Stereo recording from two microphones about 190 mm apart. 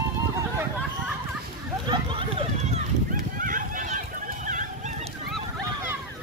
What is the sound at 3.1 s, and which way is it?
Run, 45° right (ahead or behind).